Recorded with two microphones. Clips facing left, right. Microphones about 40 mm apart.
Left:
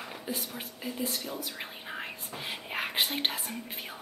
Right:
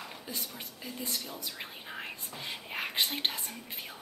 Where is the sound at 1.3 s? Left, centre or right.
Centre.